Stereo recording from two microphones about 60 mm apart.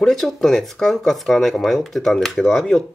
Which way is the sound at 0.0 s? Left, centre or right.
Centre.